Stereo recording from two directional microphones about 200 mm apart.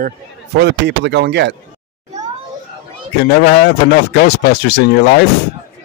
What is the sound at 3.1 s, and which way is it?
Speech, 55° left (ahead or behind).